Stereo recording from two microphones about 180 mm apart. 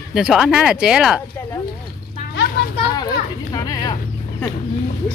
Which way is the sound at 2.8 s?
20° left (ahead or behind).